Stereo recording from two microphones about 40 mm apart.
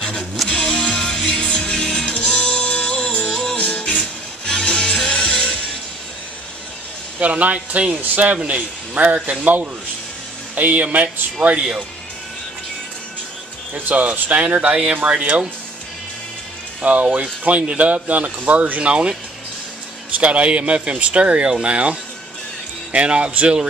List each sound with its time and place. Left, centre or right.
0.5 s music: left
3.3 s music: centre
3.5 s music: left
4.0 s music: left
7.2 s speech: right
7.9 s speech: right
11.5 s speech: centre
13.7 s speech: right
14.3 s speech: right
16.8 s speech: right
20.2 s speech: right
22.9 s speech: right